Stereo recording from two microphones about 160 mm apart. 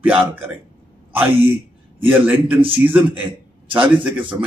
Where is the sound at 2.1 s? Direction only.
10° right (ahead or behind).